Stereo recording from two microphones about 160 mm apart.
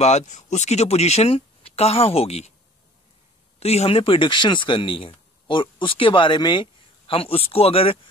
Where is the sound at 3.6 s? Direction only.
40° left (ahead or behind).